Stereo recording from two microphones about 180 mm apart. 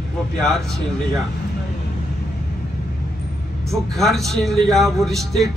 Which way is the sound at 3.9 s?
Centre (ahead or behind).